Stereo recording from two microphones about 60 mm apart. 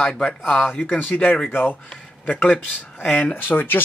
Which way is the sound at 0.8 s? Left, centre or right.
Left.